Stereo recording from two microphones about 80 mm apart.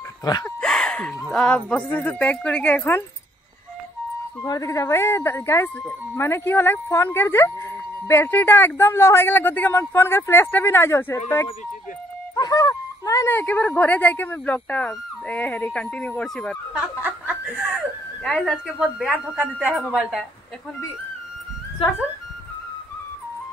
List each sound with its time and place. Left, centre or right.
0.2 s speech: left
0.6 s a sound: centre
1.3 s speech: centre
4.4 s speech: left
12.4 s speech: left
13.3 s speech: left
16.7 s a sound: centre
18.2 s speech: centre
19.1 s a woman's voice: centre
19.7 s speech: centre